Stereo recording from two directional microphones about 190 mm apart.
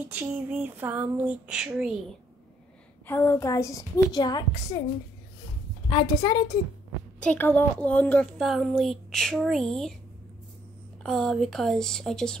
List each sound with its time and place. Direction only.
0.1 s speech: 10° right (ahead or behind)
3.1 s a woman's voice: 10° left (ahead or behind)
5.9 s a woman's voice: 25° left (ahead or behind)
7.2 s a woman's voice: 10° left (ahead or behind)
11.0 s a woman's voice: centre (ahead or behind)